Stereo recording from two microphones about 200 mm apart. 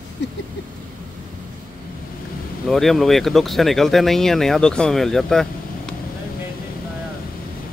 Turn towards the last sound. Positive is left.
turn(degrees=0)  # may be behind; listen again after turning